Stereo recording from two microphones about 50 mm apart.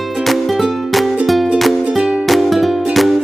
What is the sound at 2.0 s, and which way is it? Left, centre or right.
Music, centre.